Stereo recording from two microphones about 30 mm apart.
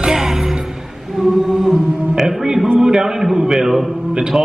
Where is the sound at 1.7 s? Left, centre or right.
Centre.